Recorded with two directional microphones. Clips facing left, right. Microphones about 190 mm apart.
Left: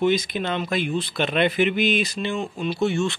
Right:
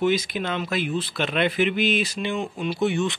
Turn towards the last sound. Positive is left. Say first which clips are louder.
# left 1 dB
turn(degrees=-15)  # may be behind; listen again after turning